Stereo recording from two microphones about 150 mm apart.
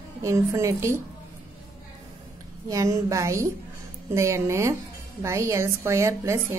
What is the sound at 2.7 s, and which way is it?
A woman's voice, 20° right (ahead or behind).